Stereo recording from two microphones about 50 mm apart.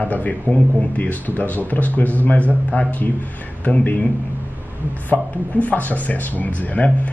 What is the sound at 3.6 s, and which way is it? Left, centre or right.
Speech, left.